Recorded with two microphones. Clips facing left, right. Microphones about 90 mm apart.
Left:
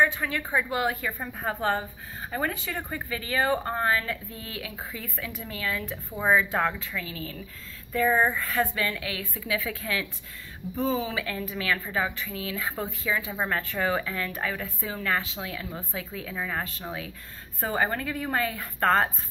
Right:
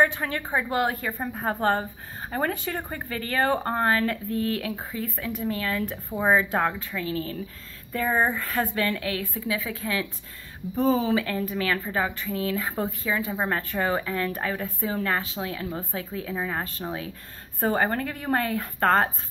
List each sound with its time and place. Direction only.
0.0 s speech: 45° right (ahead or behind)
1.2 s speech: 30° right (ahead or behind)
10.8 s speech: 45° right (ahead or behind)